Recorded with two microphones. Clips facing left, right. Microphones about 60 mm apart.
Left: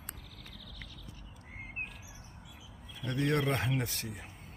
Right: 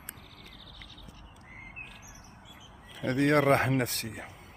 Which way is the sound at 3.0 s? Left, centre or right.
Right.